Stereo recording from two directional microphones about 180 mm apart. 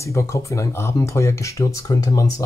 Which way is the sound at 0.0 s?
15° left (ahead or behind).